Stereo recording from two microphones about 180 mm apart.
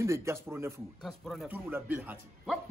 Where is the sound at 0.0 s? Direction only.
15° right (ahead or behind).